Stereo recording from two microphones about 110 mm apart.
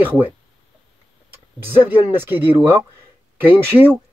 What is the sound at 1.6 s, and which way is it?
Speech, 20° right (ahead or behind).